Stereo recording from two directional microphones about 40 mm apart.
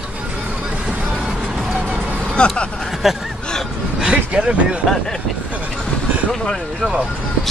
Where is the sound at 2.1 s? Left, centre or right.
Left.